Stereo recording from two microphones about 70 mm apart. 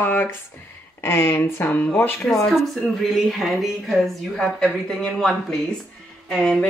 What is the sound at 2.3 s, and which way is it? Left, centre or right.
A woman's voice, centre.